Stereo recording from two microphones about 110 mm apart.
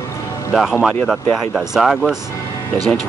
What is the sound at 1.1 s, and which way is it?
Speech, centre (ahead or behind).